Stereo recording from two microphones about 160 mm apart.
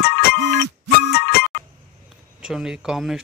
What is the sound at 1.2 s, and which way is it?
Music, 70° left (ahead or behind).